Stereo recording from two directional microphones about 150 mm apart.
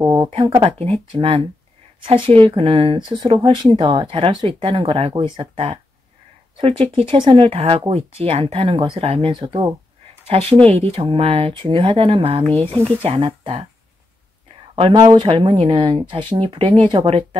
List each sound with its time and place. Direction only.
0.0 s speech: 30° right (ahead or behind)
15.0 s speech: 30° right (ahead or behind)